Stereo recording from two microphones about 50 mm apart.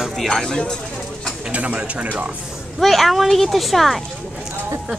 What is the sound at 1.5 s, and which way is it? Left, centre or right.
Speech, right.